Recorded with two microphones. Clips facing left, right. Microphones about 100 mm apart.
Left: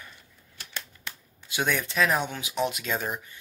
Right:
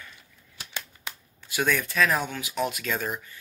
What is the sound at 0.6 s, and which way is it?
Scissors, 15° right (ahead or behind).